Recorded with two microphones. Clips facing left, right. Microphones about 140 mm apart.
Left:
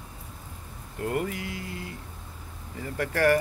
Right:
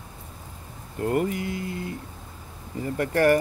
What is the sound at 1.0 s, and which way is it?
Speech, 35° right (ahead or behind).